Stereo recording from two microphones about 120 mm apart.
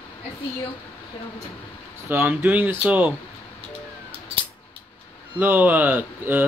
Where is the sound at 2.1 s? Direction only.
20° right (ahead or behind).